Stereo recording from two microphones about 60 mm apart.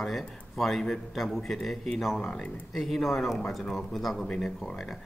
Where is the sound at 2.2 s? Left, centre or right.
Centre.